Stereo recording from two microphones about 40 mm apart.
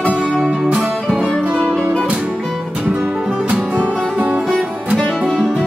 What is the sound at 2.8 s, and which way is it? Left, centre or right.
Music, right.